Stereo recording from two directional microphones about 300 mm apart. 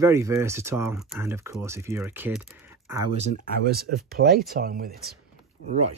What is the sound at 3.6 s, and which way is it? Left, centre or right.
Speech, right.